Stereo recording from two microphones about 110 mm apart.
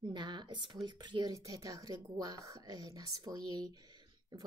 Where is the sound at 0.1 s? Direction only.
45° right (ahead or behind).